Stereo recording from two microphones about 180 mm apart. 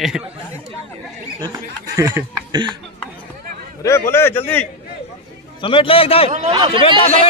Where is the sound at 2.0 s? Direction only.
25° right (ahead or behind).